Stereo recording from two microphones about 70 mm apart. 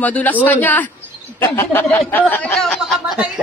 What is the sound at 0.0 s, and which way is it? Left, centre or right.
A woman's voice, left.